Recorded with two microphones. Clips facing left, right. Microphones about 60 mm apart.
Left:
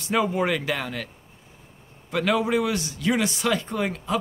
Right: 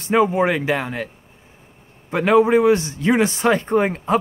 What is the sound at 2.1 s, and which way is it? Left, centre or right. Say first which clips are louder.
A man's voice: right 8 dB; right.